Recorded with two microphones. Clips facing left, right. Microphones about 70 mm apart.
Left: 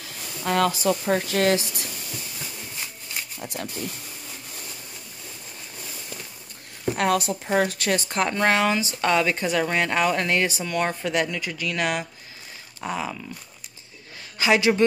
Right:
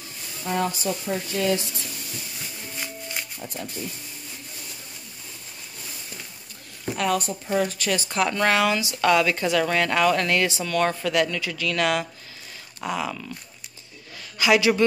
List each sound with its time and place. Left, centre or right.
0.5 s speech: left
3.4 s speech: left
7.0 s a woman's voice: left
8.1 s a woman's voice: left
14.4 s a woman's voice: left